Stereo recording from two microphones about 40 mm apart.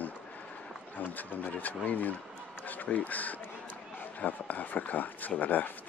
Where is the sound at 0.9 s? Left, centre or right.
Left.